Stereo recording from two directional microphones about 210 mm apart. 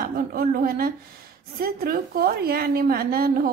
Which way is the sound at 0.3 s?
45° right (ahead or behind).